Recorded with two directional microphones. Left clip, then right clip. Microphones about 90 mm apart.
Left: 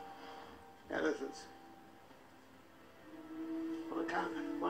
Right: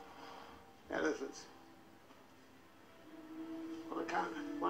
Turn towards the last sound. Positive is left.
turn(degrees=0)  # may be behind; listen again after turning